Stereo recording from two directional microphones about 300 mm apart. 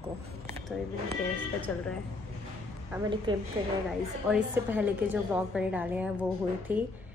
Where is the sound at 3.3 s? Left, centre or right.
Centre.